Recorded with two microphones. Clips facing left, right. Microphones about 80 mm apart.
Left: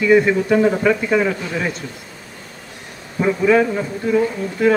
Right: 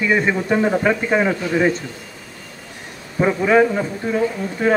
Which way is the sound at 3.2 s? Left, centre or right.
Right.